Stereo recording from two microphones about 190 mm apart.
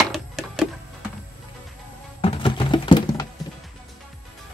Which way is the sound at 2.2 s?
25° left (ahead or behind).